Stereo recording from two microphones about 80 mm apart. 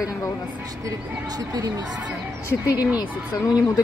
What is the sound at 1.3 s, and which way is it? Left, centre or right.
Speech, right.